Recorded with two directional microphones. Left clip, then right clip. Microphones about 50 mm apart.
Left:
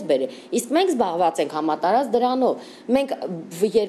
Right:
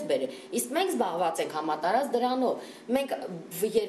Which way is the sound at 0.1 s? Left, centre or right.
Left.